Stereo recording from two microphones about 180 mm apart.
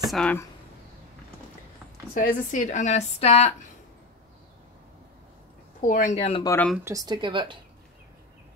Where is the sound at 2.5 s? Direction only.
45° left (ahead or behind).